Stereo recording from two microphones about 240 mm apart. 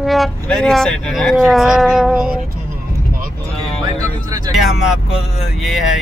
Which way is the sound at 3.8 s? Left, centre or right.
Centre.